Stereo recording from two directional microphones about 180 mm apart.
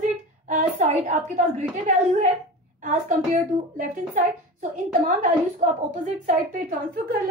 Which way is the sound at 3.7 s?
45° right (ahead or behind).